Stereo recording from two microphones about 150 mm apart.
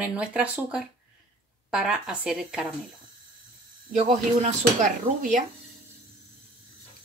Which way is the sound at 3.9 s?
55° right (ahead or behind).